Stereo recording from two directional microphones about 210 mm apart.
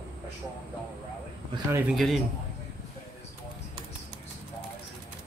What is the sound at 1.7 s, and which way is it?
Speech, centre (ahead or behind).